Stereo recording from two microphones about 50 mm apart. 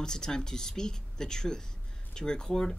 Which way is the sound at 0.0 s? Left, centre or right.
Centre.